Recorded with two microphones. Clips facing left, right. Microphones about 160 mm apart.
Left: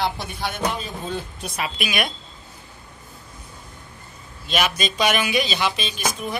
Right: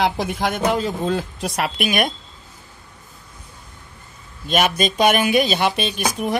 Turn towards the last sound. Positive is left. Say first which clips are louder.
# right 5 dB
turn(degrees=-65)  # may be behind; listen again after turning